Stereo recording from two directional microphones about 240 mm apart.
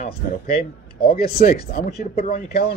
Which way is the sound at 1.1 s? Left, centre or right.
Left.